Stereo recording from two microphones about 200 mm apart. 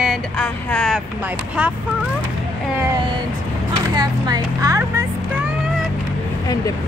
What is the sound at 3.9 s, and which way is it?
Music, 20° right (ahead or behind).